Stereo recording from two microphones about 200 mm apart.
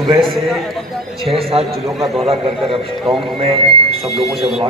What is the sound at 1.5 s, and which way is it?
Speech, 30° right (ahead or behind).